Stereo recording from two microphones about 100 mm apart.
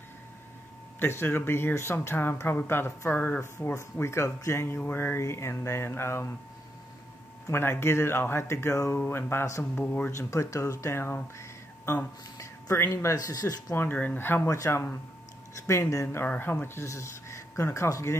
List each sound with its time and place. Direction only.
0.9 s speech: 20° left (ahead or behind)
7.4 s speech: 25° left (ahead or behind)
10.1 s speech: 30° left (ahead or behind)
13.7 s speech: 15° left (ahead or behind)